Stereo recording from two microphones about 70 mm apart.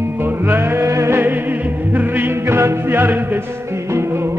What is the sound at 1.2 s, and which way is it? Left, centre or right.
Music, right.